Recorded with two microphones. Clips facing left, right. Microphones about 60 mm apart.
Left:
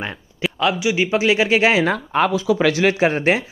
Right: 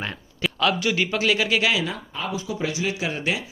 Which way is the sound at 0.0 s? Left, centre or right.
Centre.